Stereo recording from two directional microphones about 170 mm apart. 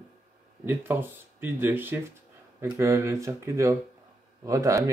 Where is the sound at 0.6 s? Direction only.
10° right (ahead or behind).